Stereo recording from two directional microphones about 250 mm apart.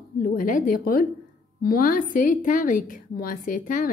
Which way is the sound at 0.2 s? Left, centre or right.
Left.